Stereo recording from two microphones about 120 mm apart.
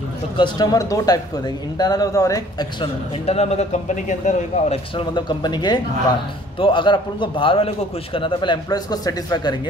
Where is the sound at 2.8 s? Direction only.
55° left (ahead or behind); by 4.8 s 85° left.